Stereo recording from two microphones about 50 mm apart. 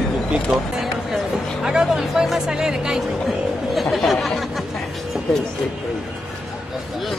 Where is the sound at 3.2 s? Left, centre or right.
Centre.